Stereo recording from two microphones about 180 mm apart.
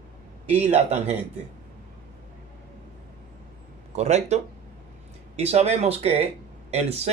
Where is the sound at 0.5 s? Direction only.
35° right (ahead or behind).